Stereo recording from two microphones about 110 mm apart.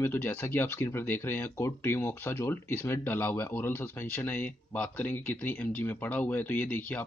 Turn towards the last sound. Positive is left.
turn(degrees=15)  # may be behind; listen again after turning